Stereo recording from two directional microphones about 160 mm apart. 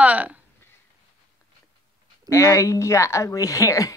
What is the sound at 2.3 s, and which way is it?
Speech, 20° left (ahead or behind).